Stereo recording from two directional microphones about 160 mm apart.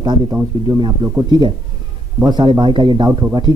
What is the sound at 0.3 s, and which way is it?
Speech, 15° right (ahead or behind).